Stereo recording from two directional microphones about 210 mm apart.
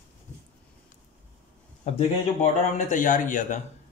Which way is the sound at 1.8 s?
30° left (ahead or behind).